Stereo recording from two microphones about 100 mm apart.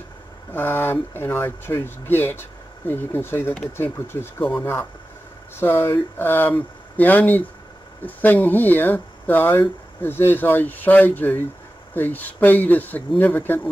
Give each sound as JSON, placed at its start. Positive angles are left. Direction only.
{"t": 0.5, "sound": "speech", "side_deg": 20}
{"t": 5.6, "sound": "speech", "side_deg": 20}